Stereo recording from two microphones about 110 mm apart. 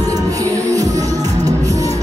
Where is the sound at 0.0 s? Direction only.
30° right (ahead or behind).